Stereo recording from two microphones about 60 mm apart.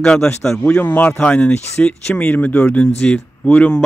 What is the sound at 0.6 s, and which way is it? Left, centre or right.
Speech, left.